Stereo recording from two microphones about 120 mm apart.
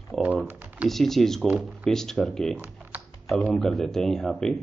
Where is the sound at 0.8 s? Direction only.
Centre (ahead or behind).